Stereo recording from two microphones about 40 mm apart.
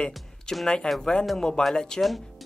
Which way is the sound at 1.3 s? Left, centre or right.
Centre.